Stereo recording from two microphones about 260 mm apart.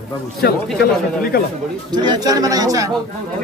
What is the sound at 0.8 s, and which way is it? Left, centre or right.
Speech, left.